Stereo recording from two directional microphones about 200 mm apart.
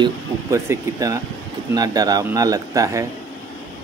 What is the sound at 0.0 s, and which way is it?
Speech, 15° right (ahead or behind).